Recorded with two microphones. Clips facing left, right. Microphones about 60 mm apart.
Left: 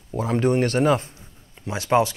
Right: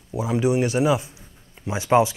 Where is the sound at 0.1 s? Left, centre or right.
Centre.